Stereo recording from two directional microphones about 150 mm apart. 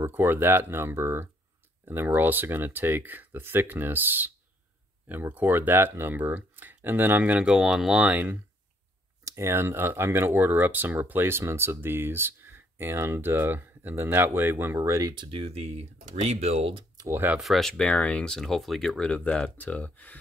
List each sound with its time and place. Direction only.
0.0 s speech: 15° right (ahead or behind); by 16.8 s 40° right (ahead or behind)
16.9 s a sound: 25° right (ahead or behind)
17.4 s speech: centre (ahead or behind)